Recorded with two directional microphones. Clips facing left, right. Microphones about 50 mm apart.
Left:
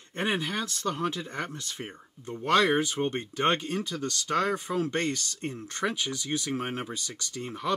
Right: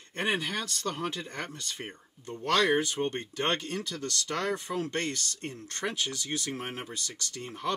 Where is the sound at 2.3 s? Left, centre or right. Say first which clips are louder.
Left 2 dB; centre.